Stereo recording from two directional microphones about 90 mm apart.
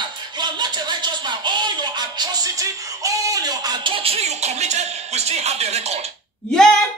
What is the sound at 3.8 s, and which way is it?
Music, 80° right.